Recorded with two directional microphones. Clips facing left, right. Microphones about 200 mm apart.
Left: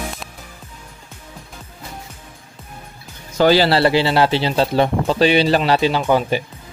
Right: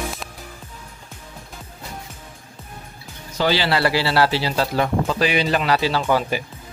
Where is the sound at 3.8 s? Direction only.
20° left (ahead or behind).